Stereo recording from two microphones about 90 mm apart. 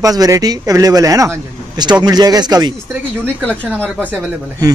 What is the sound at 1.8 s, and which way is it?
Speech, 50° right (ahead or behind).